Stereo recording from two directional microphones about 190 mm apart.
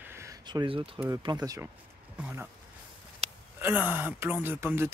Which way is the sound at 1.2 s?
20° right (ahead or behind).